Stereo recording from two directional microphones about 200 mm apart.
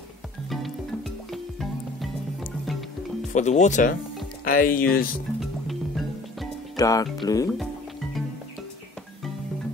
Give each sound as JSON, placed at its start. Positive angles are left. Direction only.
{"t": 0.5, "sound": "music", "side_deg": 0}
{"t": 3.3, "sound": "speech", "side_deg": 35}
{"t": 5.4, "sound": "music", "side_deg": 0}
{"t": 6.8, "sound": "speech", "side_deg": 20}